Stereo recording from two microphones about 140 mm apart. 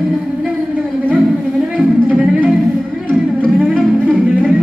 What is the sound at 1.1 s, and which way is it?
Music, 5° right (ahead or behind).